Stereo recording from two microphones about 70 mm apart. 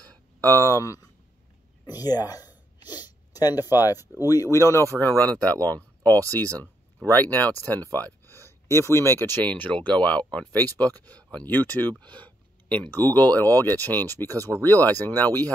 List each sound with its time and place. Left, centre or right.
0.4 s speech: left
1.9 s speech: left
4.0 s speech: right
4.3 s speech: left
4.9 s speech: left
9.4 s speech: left